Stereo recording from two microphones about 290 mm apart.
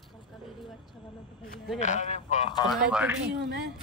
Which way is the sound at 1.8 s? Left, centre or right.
Left.